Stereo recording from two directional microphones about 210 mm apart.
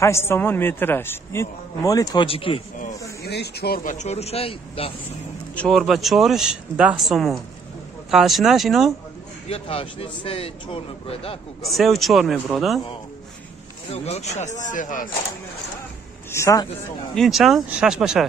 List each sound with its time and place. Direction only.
0.0 s a man's voice: 10° left (ahead or behind)
3.3 s speech: 50° left (ahead or behind); by 4.9 s 25° left (ahead or behind)
5.6 s speech: centre (ahead or behind)
9.5 s a man's voice: 25° left (ahead or behind)
11.6 s speech: centre (ahead or behind)
13.8 s speech: 30° left (ahead or behind)
16.3 s a man's voice: 15° left (ahead or behind)
17.1 s speech: centre (ahead or behind)